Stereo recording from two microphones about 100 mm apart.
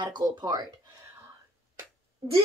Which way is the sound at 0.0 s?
45° right (ahead or behind).